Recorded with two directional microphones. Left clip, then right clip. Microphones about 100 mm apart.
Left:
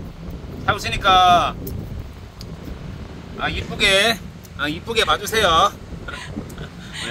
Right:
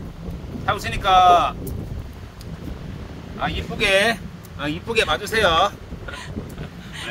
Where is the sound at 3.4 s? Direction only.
15° left (ahead or behind).